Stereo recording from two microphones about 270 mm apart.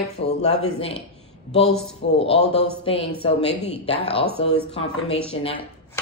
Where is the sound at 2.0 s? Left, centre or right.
Left.